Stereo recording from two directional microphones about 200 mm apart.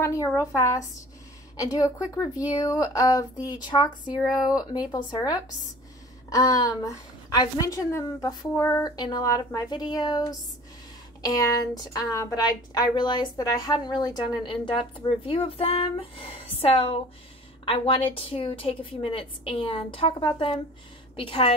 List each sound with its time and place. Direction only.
0.0 s a woman's voice: 15° left (ahead or behind)
4.3 s speech: 5° right (ahead or behind)
4.6 s a woman's voice: 20° left (ahead or behind)
11.2 s a woman's voice: 15° left (ahead or behind)